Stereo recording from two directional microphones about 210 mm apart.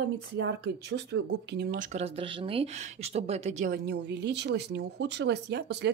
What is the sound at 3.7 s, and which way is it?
Speech, 50° right (ahead or behind).